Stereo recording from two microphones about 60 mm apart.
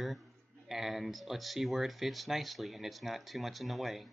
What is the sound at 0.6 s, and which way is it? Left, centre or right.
Speech, centre.